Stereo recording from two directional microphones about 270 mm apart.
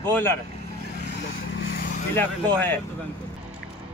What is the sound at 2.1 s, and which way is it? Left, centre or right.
Speech, centre.